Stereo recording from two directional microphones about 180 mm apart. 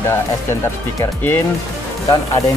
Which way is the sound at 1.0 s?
10° left (ahead or behind).